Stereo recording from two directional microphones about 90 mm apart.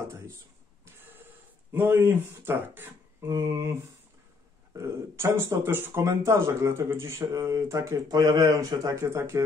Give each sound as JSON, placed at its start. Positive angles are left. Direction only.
{"t": 1.7, "sound": "speech", "side_deg": -25}
{"t": 3.3, "sound": "speech", "side_deg": -35}
{"t": 4.7, "sound": "speech", "side_deg": -35}
{"t": 8.9, "sound": "speech", "side_deg": -30}